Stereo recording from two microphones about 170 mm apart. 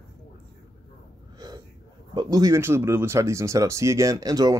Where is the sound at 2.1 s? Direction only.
20° right (ahead or behind).